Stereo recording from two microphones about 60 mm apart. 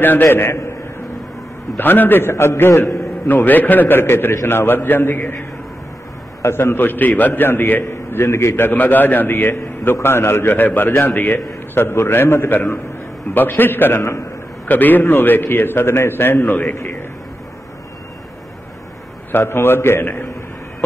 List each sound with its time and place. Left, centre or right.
0.0 s a man's voice: left
1.8 s a man's voice: left
2.3 s a man's voice: left
3.3 s a man's voice: left
6.4 s a man's voice: left
19.3 s a man's voice: left